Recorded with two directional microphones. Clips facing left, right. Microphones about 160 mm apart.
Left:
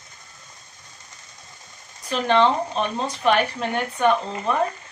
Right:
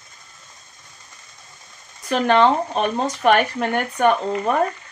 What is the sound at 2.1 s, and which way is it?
Speech, 50° right (ahead or behind).